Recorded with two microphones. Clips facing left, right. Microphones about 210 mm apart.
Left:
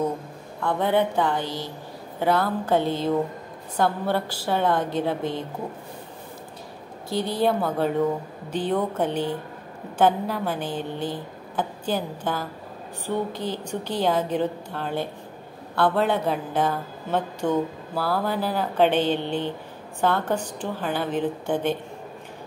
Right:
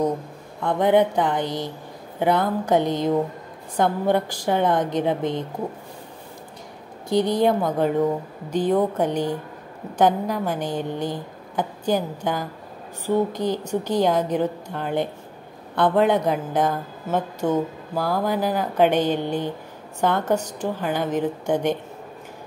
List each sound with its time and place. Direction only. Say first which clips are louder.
0.6 s a woman's voice: right 4 dB; 15° right (ahead or behind)
7.1 s a woman's voice: right 4 dB; 15° right (ahead or behind)